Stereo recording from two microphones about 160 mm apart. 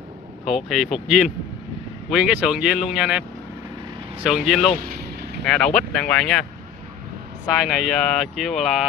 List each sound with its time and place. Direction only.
0.5 s speech: centre (ahead or behind)
4.7 s vehicle: 65° right (ahead or behind)
5.4 s speech: 5° left (ahead or behind)
7.6 s speech: centre (ahead or behind)